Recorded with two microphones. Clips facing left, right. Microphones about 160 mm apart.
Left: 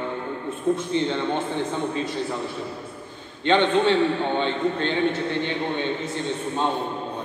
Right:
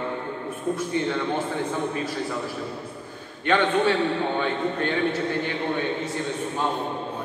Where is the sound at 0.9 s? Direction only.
25° left (ahead or behind).